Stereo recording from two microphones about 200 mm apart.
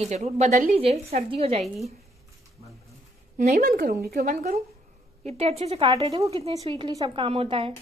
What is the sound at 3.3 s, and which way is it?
Speech, 45° right (ahead or behind).